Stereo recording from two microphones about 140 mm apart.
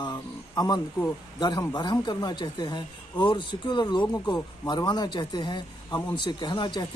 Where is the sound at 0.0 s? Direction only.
30° left (ahead or behind).